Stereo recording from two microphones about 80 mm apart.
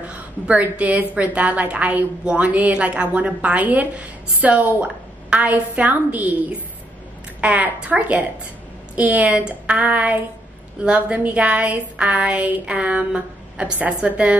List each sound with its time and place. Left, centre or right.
0.0 s a woman's voice: centre